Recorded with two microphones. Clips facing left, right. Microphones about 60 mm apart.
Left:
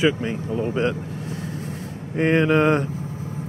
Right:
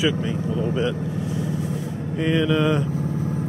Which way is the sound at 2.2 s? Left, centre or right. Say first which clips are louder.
Left 3 dB; left.